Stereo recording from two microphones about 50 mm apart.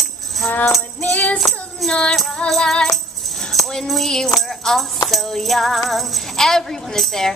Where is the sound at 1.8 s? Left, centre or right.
Left.